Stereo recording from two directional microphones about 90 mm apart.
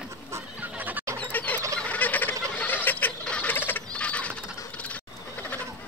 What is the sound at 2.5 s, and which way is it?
Rodents, 20° left (ahead or behind).